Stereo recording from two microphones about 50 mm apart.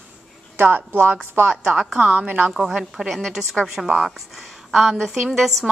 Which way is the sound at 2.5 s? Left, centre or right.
Centre.